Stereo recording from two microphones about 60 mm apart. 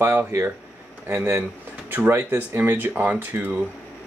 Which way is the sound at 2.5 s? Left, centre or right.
Right.